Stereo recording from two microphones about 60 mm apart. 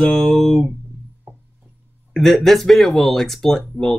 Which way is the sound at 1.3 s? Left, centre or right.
Right.